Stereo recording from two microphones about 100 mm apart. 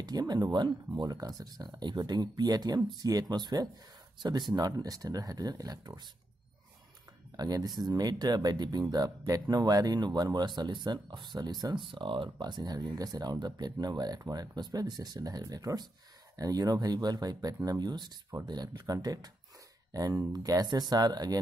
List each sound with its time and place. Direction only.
0.0 s speech: 40° right (ahead or behind)
7.3 s speech: 40° right (ahead or behind)